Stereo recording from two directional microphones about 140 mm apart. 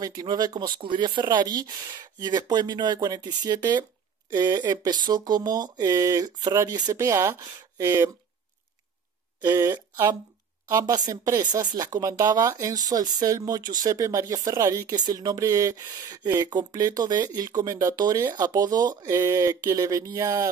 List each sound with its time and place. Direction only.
0.0 s speech: 30° right (ahead or behind)
9.4 s speech: 25° right (ahead or behind)